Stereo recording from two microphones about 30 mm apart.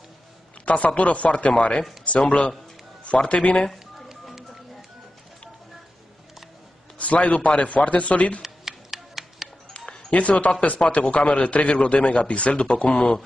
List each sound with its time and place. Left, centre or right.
0.7 s a man's voice: left
7.0 s a man's voice: left
8.4 s a sound: centre
10.1 s a man's voice: left